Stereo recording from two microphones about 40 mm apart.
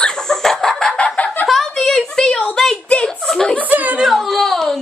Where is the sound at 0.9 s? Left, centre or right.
Left.